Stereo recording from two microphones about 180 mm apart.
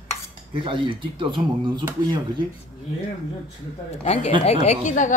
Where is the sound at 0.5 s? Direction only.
30° right (ahead or behind).